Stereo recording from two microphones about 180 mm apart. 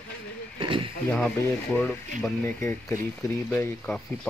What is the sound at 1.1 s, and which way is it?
Speech, 5° left (ahead or behind).